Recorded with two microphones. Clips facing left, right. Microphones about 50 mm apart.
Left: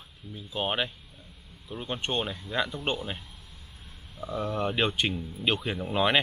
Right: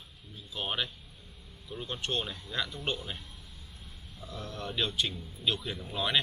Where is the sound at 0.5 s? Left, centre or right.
Left.